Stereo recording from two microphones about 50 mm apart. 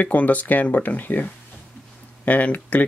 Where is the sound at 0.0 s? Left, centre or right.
Left.